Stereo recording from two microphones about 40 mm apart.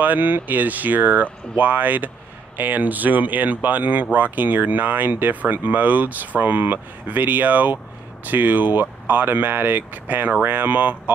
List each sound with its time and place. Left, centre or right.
0.0 s speech: right